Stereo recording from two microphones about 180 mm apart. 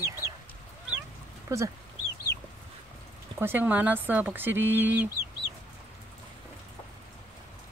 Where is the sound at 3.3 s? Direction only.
10° right (ahead or behind).